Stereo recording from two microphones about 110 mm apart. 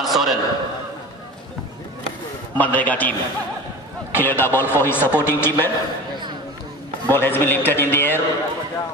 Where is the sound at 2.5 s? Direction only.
15° left (ahead or behind).